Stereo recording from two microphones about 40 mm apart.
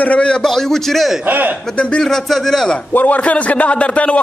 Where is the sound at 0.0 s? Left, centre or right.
Left.